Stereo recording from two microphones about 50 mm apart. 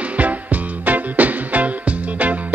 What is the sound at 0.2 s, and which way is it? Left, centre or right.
Music, right.